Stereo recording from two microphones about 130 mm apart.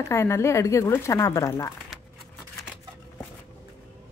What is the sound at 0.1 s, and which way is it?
Speech, 20° left (ahead or behind).